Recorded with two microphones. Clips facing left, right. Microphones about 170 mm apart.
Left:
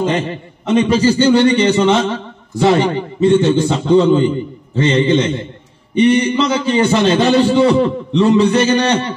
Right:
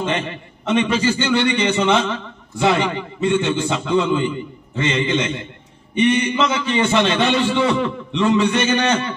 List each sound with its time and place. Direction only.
0.0 s a man's voice: 40° left (ahead or behind)